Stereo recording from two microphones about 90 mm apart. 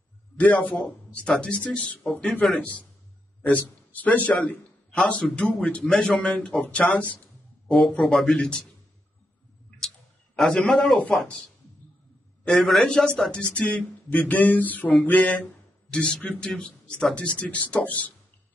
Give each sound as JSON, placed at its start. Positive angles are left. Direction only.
{"t": 0.4, "sound": "a man's voice", "side_deg": 15}
{"t": 3.6, "sound": "a man's voice", "side_deg": 20}
{"t": 10.3, "sound": "a man's voice", "side_deg": 10}
{"t": 12.4, "sound": "a man's voice", "side_deg": 5}
{"t": 13.6, "sound": "a sound", "side_deg": 15}
{"t": 15.9, "sound": "a man's voice", "side_deg": 10}